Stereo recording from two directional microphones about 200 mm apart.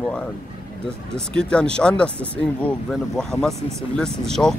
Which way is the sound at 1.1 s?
5° left (ahead or behind).